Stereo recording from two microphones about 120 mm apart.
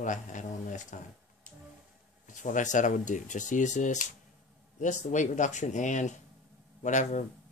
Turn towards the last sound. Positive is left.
turn(degrees=85)